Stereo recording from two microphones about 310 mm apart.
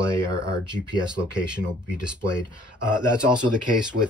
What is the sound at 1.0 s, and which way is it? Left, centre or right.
Speech, centre.